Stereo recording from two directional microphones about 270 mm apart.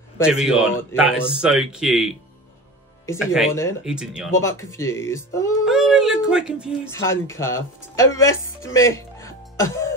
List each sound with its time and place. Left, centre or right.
0.2 s speech: centre
3.2 s speech: centre
4.4 s speech: centre
5.7 s speech: centre
6.9 s speech: centre
8.7 s music: centre